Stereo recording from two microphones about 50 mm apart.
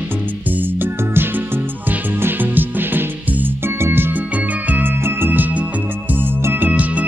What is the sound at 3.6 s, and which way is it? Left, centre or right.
Music, right.